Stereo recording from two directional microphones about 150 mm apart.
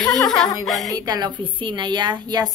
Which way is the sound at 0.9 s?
25° right (ahead or behind).